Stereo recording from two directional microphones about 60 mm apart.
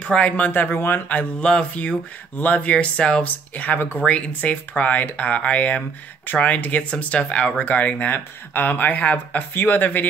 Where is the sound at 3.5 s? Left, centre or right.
Left.